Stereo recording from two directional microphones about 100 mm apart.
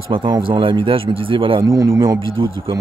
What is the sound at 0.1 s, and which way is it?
Speech, 60° right (ahead or behind).